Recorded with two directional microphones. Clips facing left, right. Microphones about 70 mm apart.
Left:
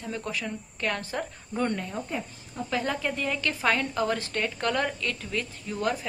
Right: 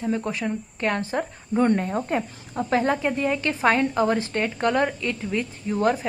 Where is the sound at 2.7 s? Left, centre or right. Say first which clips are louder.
Right 7 dB; right.